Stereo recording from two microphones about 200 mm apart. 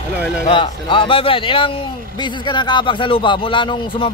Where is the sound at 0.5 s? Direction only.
25° left (ahead or behind).